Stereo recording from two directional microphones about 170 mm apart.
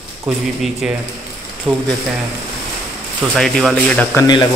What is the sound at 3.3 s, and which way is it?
Speech, centre (ahead or behind).